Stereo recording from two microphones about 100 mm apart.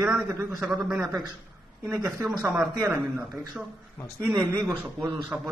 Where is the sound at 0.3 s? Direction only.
35° right (ahead or behind).